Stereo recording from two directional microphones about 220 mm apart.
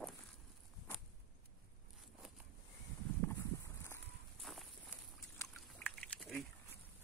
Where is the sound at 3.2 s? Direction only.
10° left (ahead or behind).